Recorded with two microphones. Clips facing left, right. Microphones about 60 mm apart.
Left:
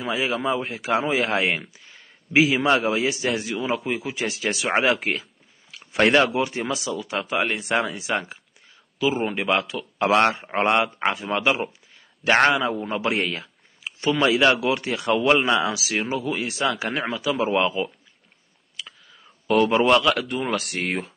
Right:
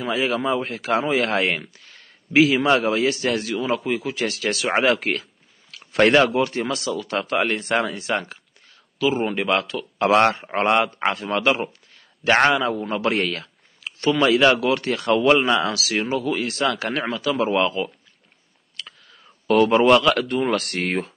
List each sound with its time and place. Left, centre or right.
0.0 s speech: centre
4.8 s a sound: centre
6.2 s a man's voice: centre
18.8 s whispering: centre
19.4 s a man's voice: centre